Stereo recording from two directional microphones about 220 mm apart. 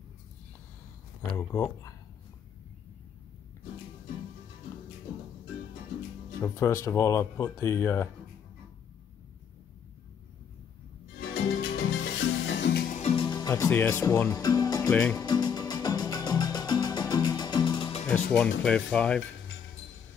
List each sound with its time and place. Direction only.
1.3 s speech: 15° left (ahead or behind)
6.4 s speech: 10° left (ahead or behind)
11.6 s music: 65° left (ahead or behind)
12.9 s music: 25° left (ahead or behind)
14.9 s speech: 5° left (ahead or behind)
15.1 s music: 20° left (ahead or behind)
18.0 s speech: 5° left (ahead or behind)